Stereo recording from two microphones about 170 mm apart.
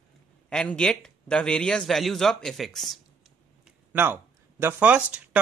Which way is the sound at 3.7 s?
10° right (ahead or behind).